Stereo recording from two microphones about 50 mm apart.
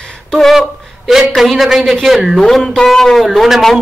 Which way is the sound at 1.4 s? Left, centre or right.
Centre.